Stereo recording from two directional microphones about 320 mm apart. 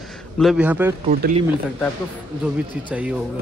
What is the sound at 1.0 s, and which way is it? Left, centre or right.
Speech, right.